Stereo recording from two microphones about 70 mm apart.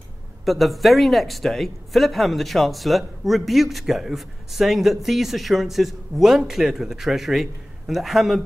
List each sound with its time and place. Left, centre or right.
0.5 s speech: centre